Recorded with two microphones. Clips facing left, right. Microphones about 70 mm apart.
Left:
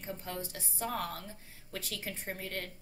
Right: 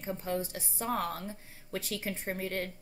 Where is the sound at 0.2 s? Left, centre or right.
Right.